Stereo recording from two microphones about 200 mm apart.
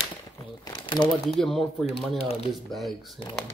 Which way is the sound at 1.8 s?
30° left (ahead or behind).